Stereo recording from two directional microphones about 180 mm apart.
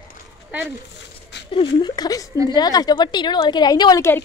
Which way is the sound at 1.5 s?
25° left (ahead or behind).